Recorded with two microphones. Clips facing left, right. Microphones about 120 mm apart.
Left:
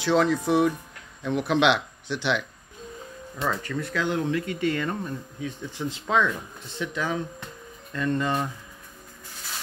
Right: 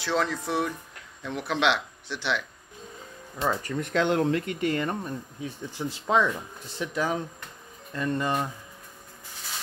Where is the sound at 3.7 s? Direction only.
20° right (ahead or behind).